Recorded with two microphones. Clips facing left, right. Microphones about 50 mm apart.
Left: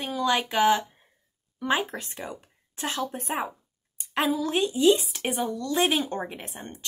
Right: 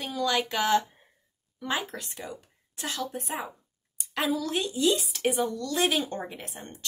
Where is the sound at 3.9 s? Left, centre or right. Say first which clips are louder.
Left 3 dB; left.